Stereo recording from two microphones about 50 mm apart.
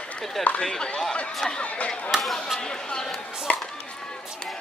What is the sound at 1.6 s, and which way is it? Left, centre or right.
Speech, left.